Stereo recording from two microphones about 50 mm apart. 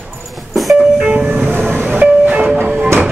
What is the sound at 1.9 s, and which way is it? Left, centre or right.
Train, right.